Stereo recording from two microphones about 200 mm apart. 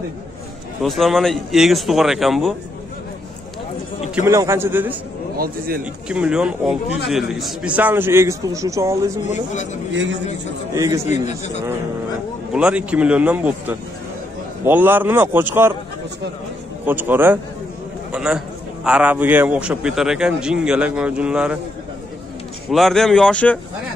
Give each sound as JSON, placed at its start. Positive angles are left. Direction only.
{"t": 0.8, "sound": "a man's voice", "side_deg": 0}
{"t": 4.1, "sound": "a man's voice", "side_deg": -15}
{"t": 6.0, "sound": "a man's voice", "side_deg": -5}
{"t": 9.3, "sound": "speech", "side_deg": 35}
{"t": 10.7, "sound": "a man's voice", "side_deg": -15}
{"t": 11.1, "sound": "speech", "side_deg": 35}
{"t": 12.5, "sound": "a man's voice", "side_deg": -5}
{"t": 16.8, "sound": "a man's voice", "side_deg": -10}
{"t": 18.1, "sound": "a sound", "side_deg": -5}
{"t": 18.9, "sound": "a man's voice", "side_deg": -5}
{"t": 22.7, "sound": "a man's voice", "side_deg": 0}